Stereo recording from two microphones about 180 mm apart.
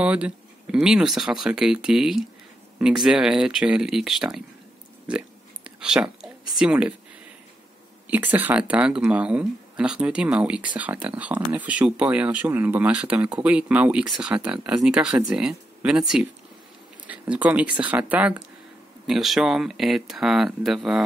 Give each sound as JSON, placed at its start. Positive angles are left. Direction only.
{"t": 0.0, "sound": "speech", "side_deg": -5}
{"t": 5.0, "sound": "a sound", "side_deg": -5}
{"t": 8.1, "sound": "speech", "side_deg": -10}